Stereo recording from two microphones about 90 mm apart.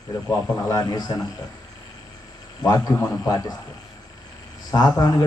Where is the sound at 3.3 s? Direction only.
45° left (ahead or behind).